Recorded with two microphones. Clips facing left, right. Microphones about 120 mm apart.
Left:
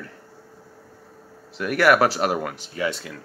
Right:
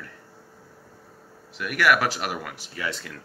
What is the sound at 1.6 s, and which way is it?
Speech, 35° left (ahead or behind).